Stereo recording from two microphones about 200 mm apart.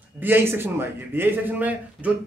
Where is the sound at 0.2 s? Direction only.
10° right (ahead or behind).